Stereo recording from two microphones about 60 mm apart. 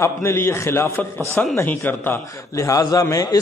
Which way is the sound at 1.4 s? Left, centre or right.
Left.